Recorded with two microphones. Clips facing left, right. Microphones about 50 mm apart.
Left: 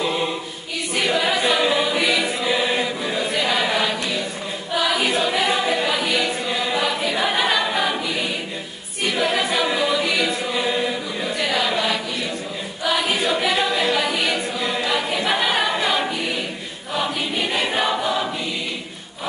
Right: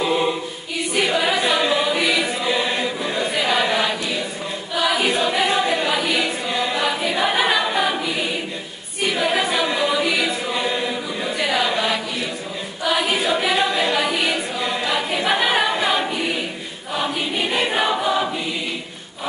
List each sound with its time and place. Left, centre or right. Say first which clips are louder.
0.0 s choir: right 3 dB; centre